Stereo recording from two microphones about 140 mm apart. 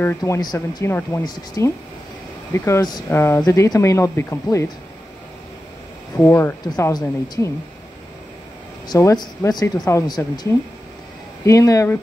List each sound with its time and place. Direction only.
0.2 s speech: 30° left (ahead or behind)
0.8 s speech: 20° left (ahead or behind)
1.2 s speech: 30° left (ahead or behind)
6.2 s speech: 15° left (ahead or behind)
6.6 s speech: 30° left (ahead or behind)
8.8 s speech: 30° left (ahead or behind)
11.4 s speech: 25° left (ahead or behind)